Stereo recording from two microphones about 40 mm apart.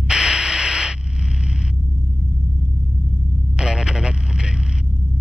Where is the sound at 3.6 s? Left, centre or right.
Centre.